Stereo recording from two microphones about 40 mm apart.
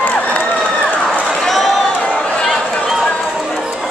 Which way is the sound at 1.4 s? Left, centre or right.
Centre.